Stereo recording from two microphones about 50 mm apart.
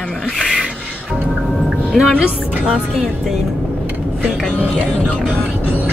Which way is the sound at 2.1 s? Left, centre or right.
Right.